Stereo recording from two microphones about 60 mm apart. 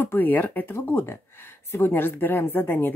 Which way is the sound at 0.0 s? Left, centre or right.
Left.